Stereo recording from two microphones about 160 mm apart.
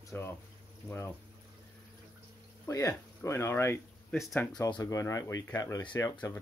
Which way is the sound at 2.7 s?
20° left (ahead or behind).